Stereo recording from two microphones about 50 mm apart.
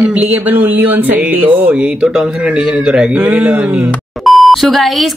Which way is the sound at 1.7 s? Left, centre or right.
Right.